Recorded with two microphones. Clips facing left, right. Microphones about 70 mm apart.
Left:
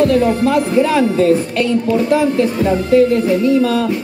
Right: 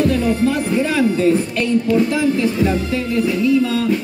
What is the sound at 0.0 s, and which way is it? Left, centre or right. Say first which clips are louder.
Speech: left 4 dB; left.